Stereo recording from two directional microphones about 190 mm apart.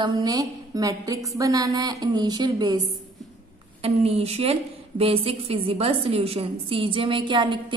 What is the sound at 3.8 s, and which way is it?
A woman's voice, 30° right (ahead or behind).